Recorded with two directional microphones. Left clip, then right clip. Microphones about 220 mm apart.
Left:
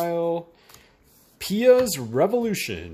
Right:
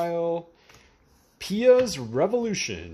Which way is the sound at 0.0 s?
5° left (ahead or behind).